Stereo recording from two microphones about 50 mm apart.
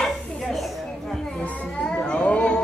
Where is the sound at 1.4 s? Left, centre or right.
Centre.